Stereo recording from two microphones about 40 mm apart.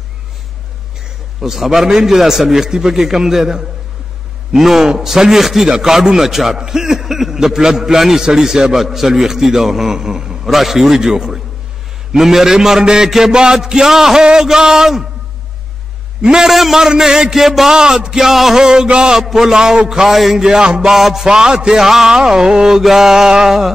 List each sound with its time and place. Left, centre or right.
1.4 s a man's voice: centre
10.4 s a man's voice: centre
16.2 s a man's voice: centre
16.4 s a man's voice: centre
17.7 s a man's voice: centre
18.6 s mantra: centre
19.2 s a man's voice: centre